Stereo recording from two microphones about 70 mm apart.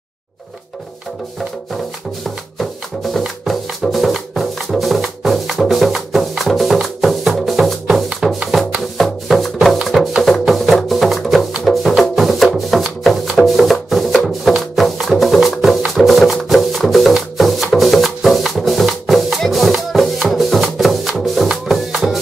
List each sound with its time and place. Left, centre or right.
2.2 s music: centre
8.9 s music: centre